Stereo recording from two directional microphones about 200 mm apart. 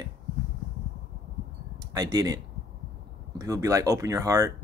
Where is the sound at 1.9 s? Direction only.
20° right (ahead or behind).